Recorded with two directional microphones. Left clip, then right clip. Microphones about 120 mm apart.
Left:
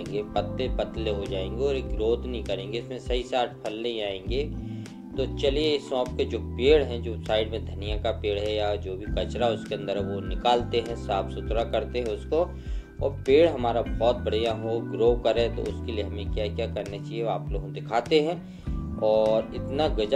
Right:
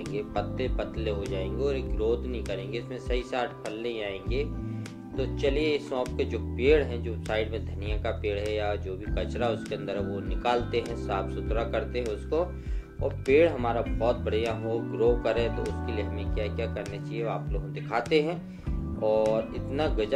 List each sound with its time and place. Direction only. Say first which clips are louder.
0.1 s speech: left 4 dB; 30° left (ahead or behind)